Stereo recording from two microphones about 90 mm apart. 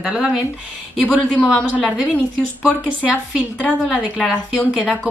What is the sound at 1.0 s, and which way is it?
A woman's voice, 15° left (ahead or behind).